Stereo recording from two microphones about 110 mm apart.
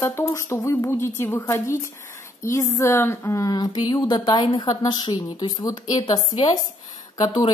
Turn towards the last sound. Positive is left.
turn(degrees=35)  # may be behind; listen again after turning